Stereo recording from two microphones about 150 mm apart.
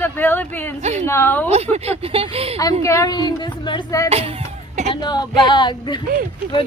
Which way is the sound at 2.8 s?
20° left (ahead or behind).